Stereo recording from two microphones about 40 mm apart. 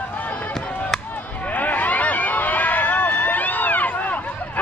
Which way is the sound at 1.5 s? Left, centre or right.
Left.